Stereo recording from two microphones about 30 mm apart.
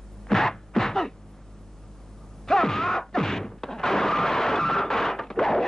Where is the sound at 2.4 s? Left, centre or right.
Centre.